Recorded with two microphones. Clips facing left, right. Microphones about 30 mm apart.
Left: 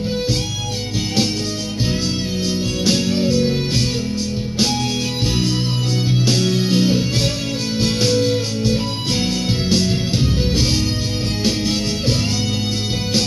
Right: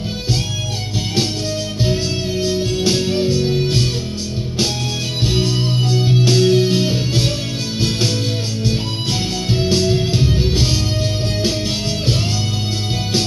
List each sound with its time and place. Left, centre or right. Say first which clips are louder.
2.4 s music: right 2 dB; right
5.3 s music: right 2 dB; right
9.7 s music: right 2 dB; centre